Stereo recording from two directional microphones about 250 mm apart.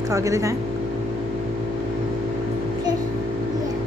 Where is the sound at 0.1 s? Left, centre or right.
Centre.